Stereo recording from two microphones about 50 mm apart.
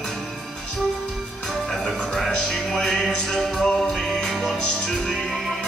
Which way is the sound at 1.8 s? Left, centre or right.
Centre.